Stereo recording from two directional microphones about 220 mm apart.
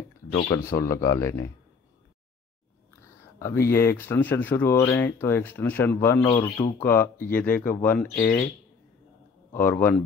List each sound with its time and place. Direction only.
0.3 s speech: 20° left (ahead or behind)
3.3 s speech: 15° left (ahead or behind)
8.2 s speech: 40° left (ahead or behind)
9.5 s speech: 10° left (ahead or behind)